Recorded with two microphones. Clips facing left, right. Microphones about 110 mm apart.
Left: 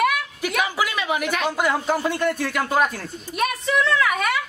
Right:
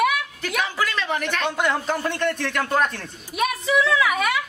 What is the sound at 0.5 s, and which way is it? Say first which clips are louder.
A man's voice: left 1 dB; 10° left (ahead or behind).